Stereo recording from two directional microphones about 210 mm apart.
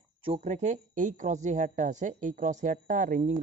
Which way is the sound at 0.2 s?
30° right (ahead or behind).